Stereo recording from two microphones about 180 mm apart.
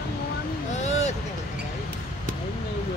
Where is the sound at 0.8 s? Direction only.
40° left (ahead or behind).